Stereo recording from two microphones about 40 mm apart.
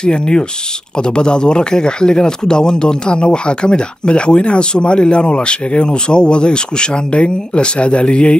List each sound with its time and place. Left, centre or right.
0.0 s speech: left